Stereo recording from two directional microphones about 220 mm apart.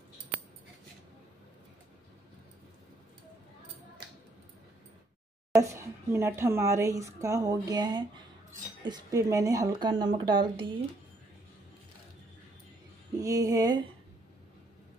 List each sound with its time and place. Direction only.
5.5 s a woman's voice: 15° right (ahead or behind)
13.2 s speech: 15° right (ahead or behind)